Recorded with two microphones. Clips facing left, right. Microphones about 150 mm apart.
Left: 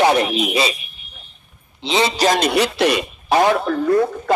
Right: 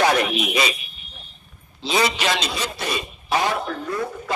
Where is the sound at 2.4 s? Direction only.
70° left (ahead or behind).